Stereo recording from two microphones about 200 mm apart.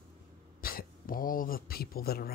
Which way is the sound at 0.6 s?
50° left (ahead or behind).